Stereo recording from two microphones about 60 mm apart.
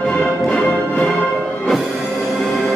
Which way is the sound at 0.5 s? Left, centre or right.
Left.